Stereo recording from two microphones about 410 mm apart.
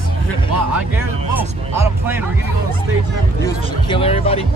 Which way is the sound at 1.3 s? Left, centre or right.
Centre.